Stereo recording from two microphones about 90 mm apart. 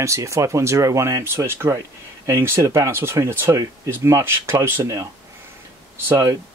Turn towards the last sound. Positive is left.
turn(degrees=-35)  # may be behind; listen again after turning